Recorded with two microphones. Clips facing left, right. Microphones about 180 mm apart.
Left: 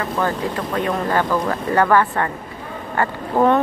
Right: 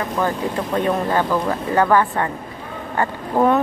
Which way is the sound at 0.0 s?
15° right (ahead or behind).